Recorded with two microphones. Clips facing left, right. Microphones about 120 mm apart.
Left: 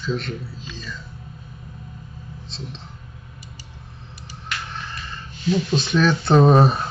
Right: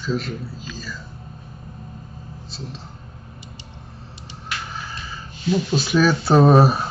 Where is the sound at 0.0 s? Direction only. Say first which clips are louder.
Right 1 dB; centre (ahead or behind).